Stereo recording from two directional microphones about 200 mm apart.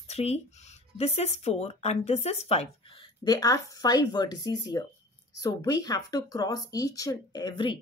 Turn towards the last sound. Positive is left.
turn(degrees=20)  # may be behind; listen again after turning